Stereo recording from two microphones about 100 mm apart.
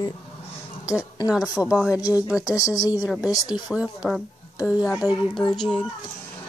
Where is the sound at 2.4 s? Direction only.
35° left (ahead or behind).